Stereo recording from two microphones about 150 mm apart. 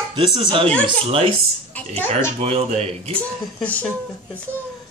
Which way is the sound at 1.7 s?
10° left (ahead or behind).